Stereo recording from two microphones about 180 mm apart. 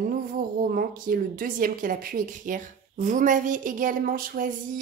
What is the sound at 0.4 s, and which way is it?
A woman's voice, 50° right (ahead or behind).